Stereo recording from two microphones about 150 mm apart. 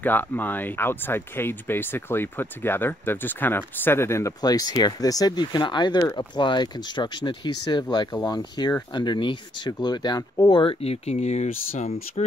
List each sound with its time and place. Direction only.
0.0 s speech: 10° left (ahead or behind); by 12.3 s 50° left (ahead or behind)